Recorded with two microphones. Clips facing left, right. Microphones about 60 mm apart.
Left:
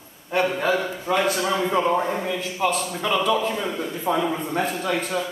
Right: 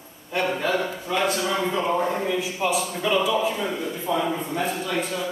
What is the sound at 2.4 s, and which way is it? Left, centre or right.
A man's voice, centre.